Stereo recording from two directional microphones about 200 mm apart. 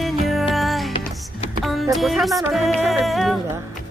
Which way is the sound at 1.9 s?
Centre (ahead or behind).